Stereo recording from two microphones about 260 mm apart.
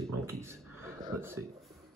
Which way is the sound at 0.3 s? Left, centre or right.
Centre.